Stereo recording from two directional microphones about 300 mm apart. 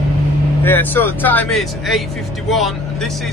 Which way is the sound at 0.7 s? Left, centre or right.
Centre.